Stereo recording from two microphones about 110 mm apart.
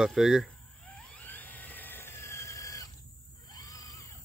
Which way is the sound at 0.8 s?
10° left (ahead or behind).